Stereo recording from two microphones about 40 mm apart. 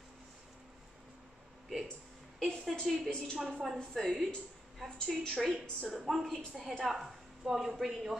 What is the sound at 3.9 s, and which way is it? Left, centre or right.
Speech, centre.